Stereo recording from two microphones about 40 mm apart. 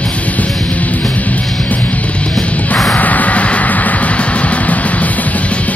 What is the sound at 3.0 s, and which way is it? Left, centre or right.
Music, left.